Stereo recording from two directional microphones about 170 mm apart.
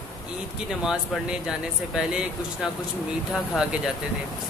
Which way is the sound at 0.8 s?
5° right (ahead or behind).